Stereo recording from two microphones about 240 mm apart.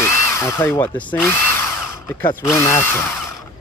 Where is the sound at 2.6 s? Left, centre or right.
Centre.